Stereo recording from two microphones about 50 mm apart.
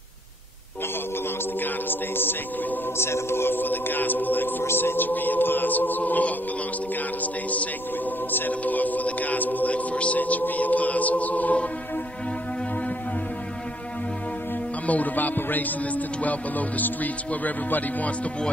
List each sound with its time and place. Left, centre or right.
1.6 s a capella: left
3.0 s speech: left
8.3 s speech: left
14.9 s speech: left